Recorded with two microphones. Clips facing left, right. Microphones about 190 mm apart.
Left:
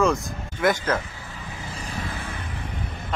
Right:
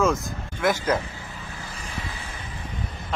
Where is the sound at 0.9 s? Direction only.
20° right (ahead or behind).